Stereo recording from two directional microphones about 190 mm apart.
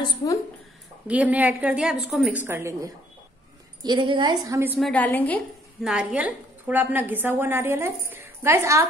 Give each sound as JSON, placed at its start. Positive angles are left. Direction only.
{"t": 1.0, "sound": "a woman's voice", "side_deg": -10}
{"t": 3.8, "sound": "a woman's voice", "side_deg": -25}
{"t": 4.7, "sound": "a woman's voice", "side_deg": 5}
{"t": 5.8, "sound": "a woman's voice", "side_deg": -5}